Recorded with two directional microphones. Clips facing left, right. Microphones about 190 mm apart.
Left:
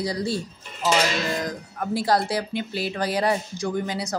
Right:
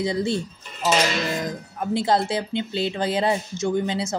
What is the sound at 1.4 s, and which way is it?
Speech, 25° right (ahead or behind).